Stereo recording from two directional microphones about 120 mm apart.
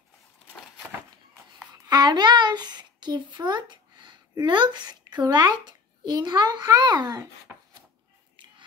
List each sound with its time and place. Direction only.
1.9 s speech: 35° right (ahead or behind)
7.5 s chopping: 15° right (ahead or behind)